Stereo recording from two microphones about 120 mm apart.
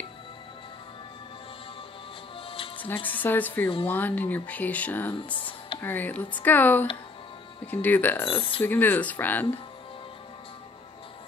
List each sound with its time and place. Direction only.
3.1 s speech: 15° left (ahead or behind)
5.1 s speech: 45° left (ahead or behind)
5.8 s speech: 15° left (ahead or behind)
8.4 s speech: 50° left (ahead or behind)
8.6 s speech: 15° left (ahead or behind)